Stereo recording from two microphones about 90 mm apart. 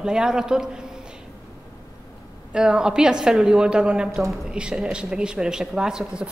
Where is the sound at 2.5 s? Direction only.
10° right (ahead or behind).